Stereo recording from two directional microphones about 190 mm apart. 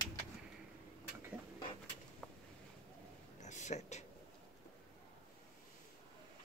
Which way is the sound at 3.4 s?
40° left (ahead or behind).